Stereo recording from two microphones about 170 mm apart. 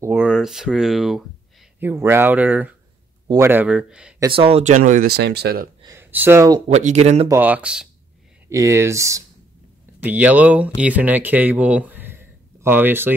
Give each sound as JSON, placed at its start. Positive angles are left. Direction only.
{"t": 0.0, "sound": "speech", "side_deg": -10}
{"t": 1.8, "sound": "speech", "side_deg": -15}
{"t": 4.3, "sound": "speech", "side_deg": -35}
{"t": 5.1, "sound": "speech", "side_deg": -75}
{"t": 5.9, "sound": "speech", "side_deg": -15}
{"t": 6.7, "sound": "speech", "side_deg": -45}
{"t": 7.2, "sound": "speech", "side_deg": -10}
{"t": 8.5, "sound": "speech", "side_deg": -15}